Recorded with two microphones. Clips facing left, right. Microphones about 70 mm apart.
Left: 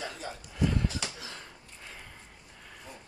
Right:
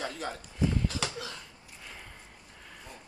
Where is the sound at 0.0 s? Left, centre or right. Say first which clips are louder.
Right 3 dB; right.